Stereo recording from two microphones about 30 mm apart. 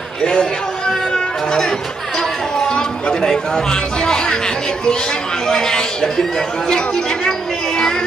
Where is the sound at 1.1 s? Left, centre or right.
Left.